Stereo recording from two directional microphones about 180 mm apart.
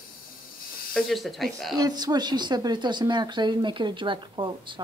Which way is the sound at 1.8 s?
20° right (ahead or behind).